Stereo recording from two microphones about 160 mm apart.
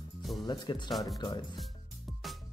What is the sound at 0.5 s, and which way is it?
Speech, 30° left (ahead or behind).